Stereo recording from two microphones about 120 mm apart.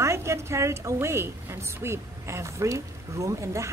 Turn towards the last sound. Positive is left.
turn(degrees=-25)  # may be behind; listen again after turning